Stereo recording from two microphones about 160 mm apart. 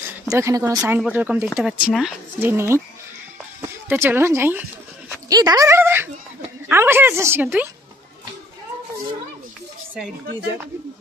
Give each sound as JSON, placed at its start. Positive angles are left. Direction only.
{"t": 0.3, "sound": "speech", "side_deg": -20}
{"t": 2.4, "sound": "speech", "side_deg": -15}